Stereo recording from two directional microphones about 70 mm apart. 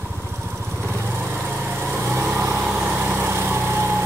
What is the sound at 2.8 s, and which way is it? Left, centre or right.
Vehicle, right.